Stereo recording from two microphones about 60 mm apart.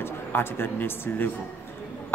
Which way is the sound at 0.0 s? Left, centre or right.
Left.